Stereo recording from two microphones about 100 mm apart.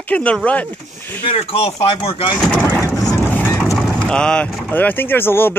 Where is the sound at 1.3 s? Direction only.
75° left (ahead or behind).